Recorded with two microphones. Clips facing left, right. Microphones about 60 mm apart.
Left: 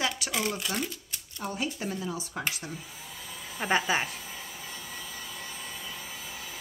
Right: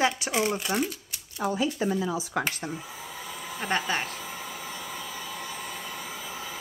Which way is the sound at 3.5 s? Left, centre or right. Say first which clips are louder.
Left 2 dB; centre.